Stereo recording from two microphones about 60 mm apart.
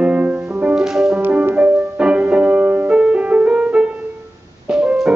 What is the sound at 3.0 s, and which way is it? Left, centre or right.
Music, centre.